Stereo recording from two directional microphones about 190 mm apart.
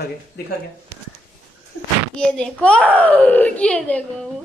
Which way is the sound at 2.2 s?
5° left (ahead or behind).